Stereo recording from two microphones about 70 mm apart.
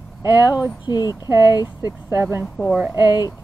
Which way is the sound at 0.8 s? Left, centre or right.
Left.